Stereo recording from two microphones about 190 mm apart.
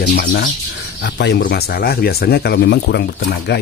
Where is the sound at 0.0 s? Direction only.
60° left (ahead or behind).